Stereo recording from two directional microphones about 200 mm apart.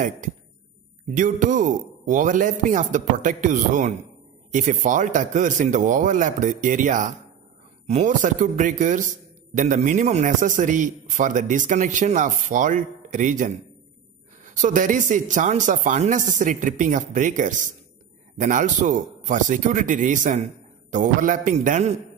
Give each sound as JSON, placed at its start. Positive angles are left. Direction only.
{"t": 1.1, "sound": "a man's voice", "side_deg": -40}